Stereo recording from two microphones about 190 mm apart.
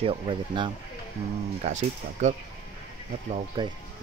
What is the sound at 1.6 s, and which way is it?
Speech, 40° right (ahead or behind).